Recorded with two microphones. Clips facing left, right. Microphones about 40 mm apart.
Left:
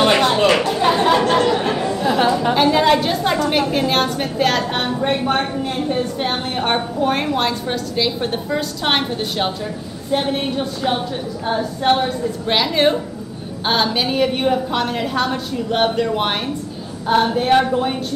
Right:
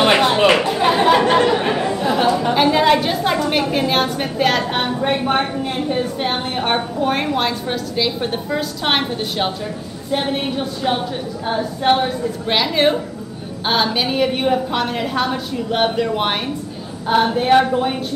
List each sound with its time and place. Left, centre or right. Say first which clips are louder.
0.0 s chatter: right 1 dB; centre
2.0 s a sound: left 1 dB; centre
3.7 s a woman's voice: even; centre